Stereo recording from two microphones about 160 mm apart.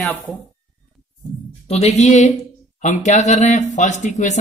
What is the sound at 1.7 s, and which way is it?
Speech, 45° left (ahead or behind).